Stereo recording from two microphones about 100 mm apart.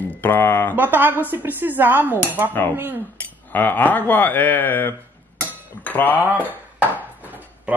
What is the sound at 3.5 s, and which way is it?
Speech, 20° left (ahead or behind).